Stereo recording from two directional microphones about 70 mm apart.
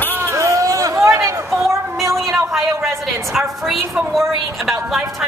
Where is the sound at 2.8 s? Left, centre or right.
Centre.